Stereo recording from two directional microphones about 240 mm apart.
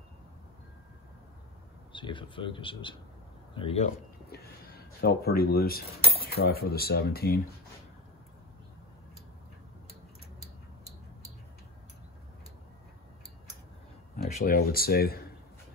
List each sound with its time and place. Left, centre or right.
1.9 s speech: left
4.3 s speech: left
14.1 s speech: left